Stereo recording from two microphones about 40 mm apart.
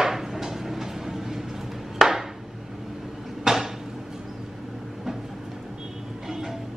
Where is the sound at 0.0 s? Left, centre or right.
Centre.